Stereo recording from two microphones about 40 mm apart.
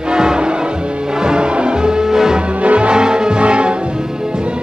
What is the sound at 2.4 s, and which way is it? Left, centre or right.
Music, right.